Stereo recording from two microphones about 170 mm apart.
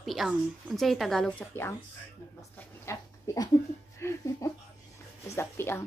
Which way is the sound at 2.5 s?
15° left (ahead or behind).